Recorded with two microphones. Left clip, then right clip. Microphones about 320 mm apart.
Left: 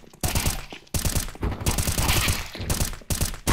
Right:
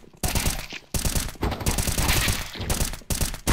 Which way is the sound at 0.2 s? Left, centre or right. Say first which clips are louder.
Even; centre.